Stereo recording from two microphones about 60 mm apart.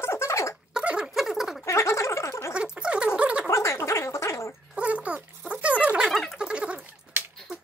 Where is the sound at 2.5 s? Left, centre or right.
Centre.